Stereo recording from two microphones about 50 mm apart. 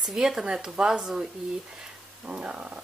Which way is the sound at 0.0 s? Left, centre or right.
Centre.